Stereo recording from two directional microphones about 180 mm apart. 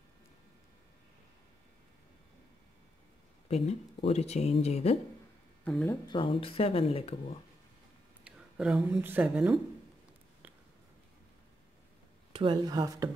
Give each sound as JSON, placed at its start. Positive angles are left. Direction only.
{"t": 3.4, "sound": "speech", "side_deg": 35}
{"t": 5.6, "sound": "speech", "side_deg": 5}
{"t": 6.0, "sound": "speech", "side_deg": 30}
{"t": 8.2, "sound": "speech", "side_deg": -5}
{"t": 12.3, "sound": "speech", "side_deg": -30}